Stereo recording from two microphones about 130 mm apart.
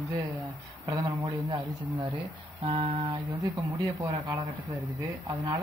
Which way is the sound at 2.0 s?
40° right (ahead or behind).